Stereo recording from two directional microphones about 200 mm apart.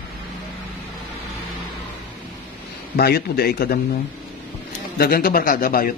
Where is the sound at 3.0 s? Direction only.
50° left (ahead or behind).